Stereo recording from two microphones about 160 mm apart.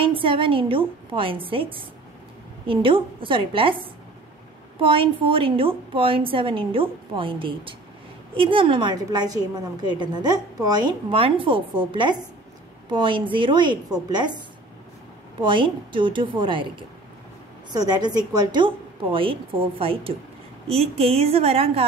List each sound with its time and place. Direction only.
0.0 s a woman's voice: 35° right (ahead or behind)
15.4 s a woman's voice: 30° right (ahead or behind)
17.7 s a woman's voice: 25° right (ahead or behind)